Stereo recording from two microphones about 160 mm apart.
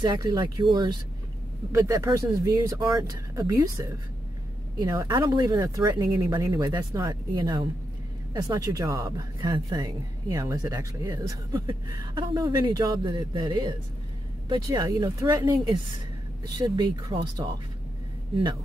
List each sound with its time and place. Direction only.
0.0 s a woman's voice: 25° right (ahead or behind)